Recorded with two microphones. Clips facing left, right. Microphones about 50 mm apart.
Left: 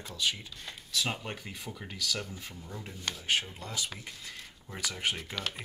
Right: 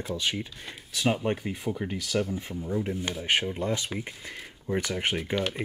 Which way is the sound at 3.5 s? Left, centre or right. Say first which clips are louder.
Right 9 dB; right.